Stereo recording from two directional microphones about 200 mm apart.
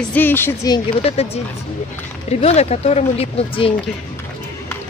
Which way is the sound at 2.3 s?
35° left (ahead or behind).